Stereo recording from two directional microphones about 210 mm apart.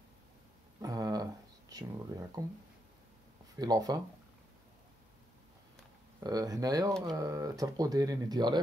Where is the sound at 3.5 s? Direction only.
20° right (ahead or behind).